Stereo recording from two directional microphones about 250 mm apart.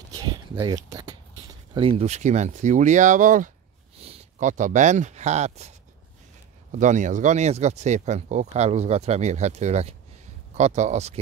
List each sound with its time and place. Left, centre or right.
0.1 s speech: centre
6.7 s speech: right